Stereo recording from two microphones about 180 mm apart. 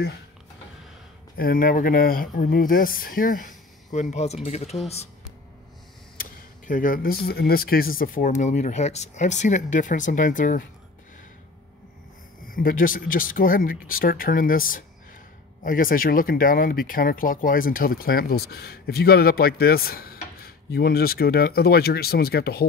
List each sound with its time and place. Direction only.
1.3 s speech: 55° left (ahead or behind); by 5.0 s 35° left (ahead or behind)
6.7 s speech: 50° left (ahead or behind)
12.4 s speech: 50° left (ahead or behind)